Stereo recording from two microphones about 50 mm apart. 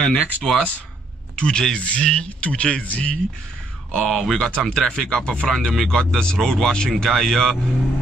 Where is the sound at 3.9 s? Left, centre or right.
Centre.